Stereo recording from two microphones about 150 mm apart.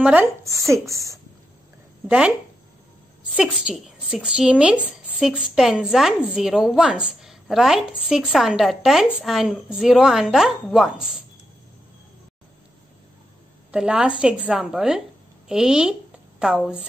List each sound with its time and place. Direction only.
0.0 s speech: 10° right (ahead or behind)
2.0 s speech: 5° right (ahead or behind)
3.3 s a woman's voice: 5° right (ahead or behind)
13.7 s a woman's voice: 5° right (ahead or behind)